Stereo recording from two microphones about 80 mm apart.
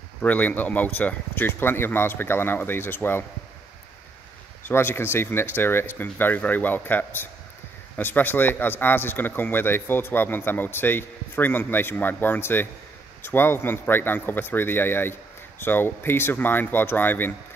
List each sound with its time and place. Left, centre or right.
0.2 s speech: centre
4.6 s speech: left